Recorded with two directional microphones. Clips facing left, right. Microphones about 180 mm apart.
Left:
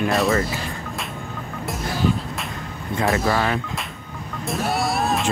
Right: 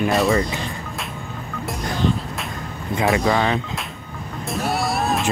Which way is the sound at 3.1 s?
20° right (ahead or behind).